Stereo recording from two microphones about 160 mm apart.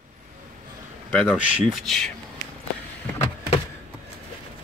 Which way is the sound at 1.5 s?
Centre (ahead or behind).